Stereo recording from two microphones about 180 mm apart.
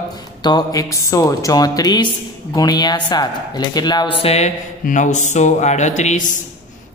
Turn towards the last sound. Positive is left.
turn(degrees=40)  # may be behind; listen again after turning